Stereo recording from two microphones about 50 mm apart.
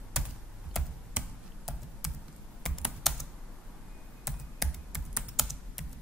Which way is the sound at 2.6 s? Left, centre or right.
Centre.